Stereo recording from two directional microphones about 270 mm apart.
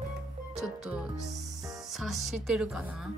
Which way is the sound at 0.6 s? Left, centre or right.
Centre.